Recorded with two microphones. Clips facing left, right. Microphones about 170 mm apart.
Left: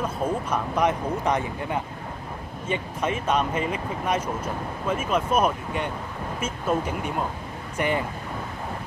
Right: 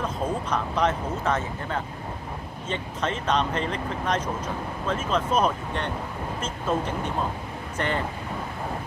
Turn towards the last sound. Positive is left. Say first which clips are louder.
# left 2 dB
turn(degrees=10)  # may be behind; listen again after turning